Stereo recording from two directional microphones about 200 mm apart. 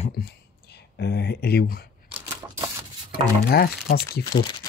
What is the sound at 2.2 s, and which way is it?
Typewriter, 10° right (ahead or behind).